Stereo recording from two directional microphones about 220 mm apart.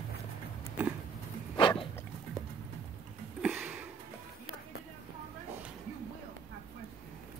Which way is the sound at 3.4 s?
5° right (ahead or behind).